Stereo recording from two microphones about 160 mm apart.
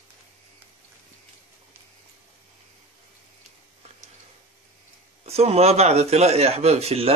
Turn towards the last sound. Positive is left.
turn(degrees=-40)  # may be behind; listen again after turning